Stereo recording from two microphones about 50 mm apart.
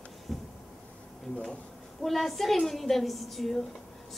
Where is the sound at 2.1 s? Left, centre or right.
Centre.